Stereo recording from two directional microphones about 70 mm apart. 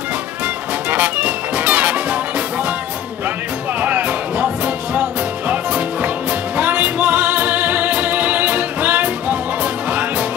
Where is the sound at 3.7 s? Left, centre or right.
Right.